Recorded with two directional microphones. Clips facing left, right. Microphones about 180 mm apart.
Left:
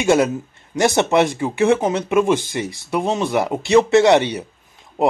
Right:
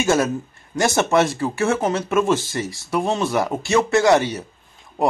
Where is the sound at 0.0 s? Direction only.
20° left (ahead or behind).